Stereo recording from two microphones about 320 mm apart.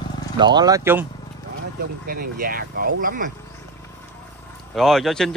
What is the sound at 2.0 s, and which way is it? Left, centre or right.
Speech, right.